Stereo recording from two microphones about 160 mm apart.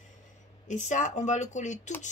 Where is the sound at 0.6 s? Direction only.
50° left (ahead or behind).